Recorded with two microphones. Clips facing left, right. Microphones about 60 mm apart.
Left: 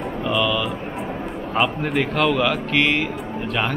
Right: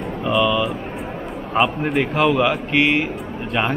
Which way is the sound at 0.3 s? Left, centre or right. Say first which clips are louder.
Right 4 dB; centre.